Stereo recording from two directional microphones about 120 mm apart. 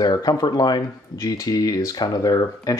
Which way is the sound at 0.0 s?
30° left (ahead or behind).